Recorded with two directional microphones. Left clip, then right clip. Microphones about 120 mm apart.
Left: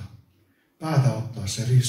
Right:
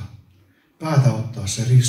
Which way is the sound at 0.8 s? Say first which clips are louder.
Right 4 dB; 35° right (ahead or behind).